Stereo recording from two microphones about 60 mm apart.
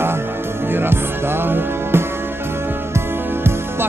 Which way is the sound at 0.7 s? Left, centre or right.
Right.